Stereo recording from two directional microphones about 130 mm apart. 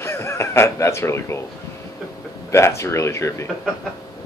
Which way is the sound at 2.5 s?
20° left (ahead or behind).